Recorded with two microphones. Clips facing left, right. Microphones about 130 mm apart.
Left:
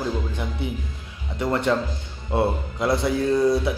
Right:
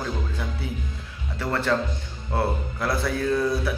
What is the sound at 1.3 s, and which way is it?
A man's voice, 20° left (ahead or behind).